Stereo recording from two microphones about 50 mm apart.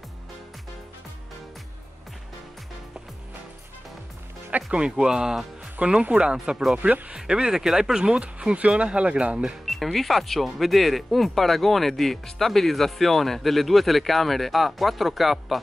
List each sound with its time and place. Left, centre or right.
4.5 s speech: right
7.2 s speech: centre
9.7 s speech: centre